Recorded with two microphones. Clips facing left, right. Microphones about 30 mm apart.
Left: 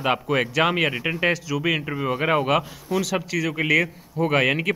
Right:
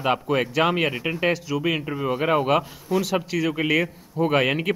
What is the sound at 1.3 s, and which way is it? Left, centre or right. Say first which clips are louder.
Speech: even; centre.